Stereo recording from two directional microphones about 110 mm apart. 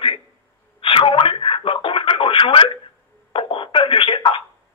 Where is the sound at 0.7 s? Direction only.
55° left (ahead or behind).